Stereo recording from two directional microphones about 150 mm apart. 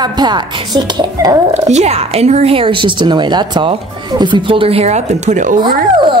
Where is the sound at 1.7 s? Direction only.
45° right (ahead or behind).